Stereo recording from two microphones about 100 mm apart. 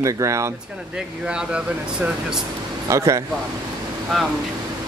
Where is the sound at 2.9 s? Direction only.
30° right (ahead or behind).